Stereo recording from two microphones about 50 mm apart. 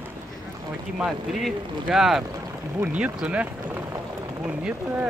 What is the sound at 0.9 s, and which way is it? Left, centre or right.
Speech, centre.